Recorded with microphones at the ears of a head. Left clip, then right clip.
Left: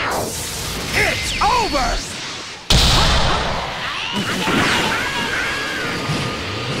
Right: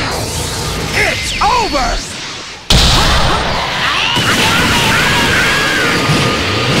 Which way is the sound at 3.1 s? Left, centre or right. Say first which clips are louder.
Right 5 dB; right.